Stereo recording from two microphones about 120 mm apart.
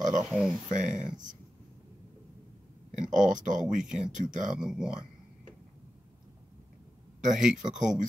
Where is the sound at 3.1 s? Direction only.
90° right.